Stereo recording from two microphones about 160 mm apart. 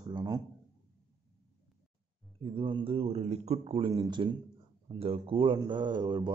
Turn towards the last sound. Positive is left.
turn(degrees=-25)  # may be behind; listen again after turning